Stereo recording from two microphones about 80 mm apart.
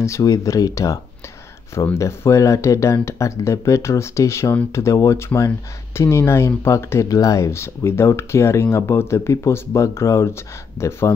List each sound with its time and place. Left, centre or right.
0.0 s speech: left
2.0 s speech: left